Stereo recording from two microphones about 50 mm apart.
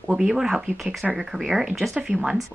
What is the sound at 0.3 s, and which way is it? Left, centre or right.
A woman's voice, centre.